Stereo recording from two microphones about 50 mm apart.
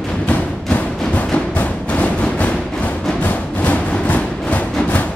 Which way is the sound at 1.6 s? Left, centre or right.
Left.